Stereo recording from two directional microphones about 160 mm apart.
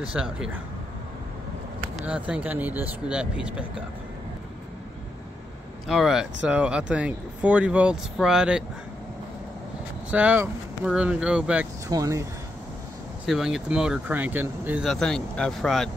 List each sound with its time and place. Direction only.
0.1 s speech: 5° right (ahead or behind)
2.0 s speech: 10° right (ahead or behind)
5.9 s speech: centre (ahead or behind)
10.1 s speech: 10° right (ahead or behind)
11.9 s speech: 20° right (ahead or behind)
13.2 s speech: centre (ahead or behind)
14.9 s speech: 5° left (ahead or behind)